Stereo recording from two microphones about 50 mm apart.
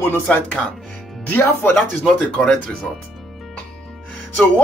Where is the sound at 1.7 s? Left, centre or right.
Centre.